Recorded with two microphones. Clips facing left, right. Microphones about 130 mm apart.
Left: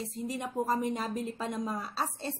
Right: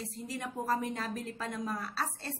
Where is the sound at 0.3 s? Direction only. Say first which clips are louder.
Left 2 dB; 20° left (ahead or behind).